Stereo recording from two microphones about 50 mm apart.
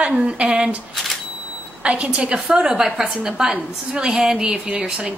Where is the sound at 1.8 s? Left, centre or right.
Right.